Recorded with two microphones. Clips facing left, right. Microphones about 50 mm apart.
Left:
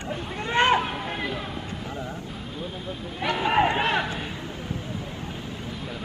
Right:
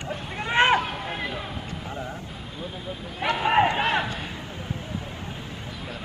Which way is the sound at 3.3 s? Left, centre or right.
Centre.